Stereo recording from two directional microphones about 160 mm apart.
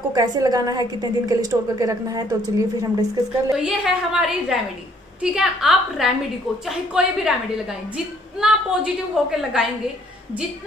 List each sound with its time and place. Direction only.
0.1 s a woman's voice: 25° right (ahead or behind)
3.5 s a woman's voice: 5° right (ahead or behind)